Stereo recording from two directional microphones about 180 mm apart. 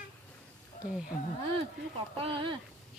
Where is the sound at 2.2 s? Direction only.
30° right (ahead or behind).